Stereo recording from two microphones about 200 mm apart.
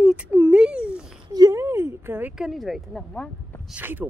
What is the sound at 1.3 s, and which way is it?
Speech, 15° right (ahead or behind).